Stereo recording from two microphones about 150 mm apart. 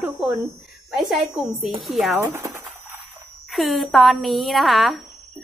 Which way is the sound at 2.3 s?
20° right (ahead or behind).